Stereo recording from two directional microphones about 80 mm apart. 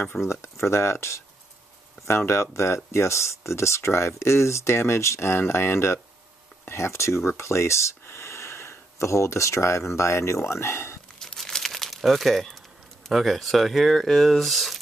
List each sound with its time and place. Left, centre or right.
0.3 s speech: left
11.1 s crumpling: centre
13.1 s speech: centre